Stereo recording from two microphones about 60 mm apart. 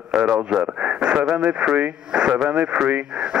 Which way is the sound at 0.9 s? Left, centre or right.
Centre.